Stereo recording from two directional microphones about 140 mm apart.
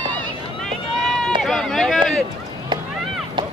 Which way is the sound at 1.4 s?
5° left (ahead or behind).